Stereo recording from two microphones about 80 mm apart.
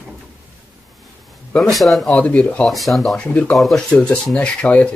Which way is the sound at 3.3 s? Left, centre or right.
Centre.